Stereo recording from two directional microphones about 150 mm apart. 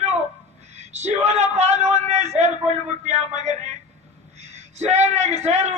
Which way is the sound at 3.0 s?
50° right (ahead or behind).